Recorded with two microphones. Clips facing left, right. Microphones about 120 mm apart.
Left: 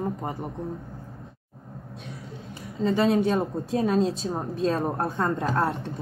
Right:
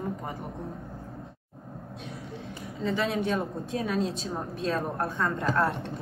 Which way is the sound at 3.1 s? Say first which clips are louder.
Left 6 dB; 30° left (ahead or behind).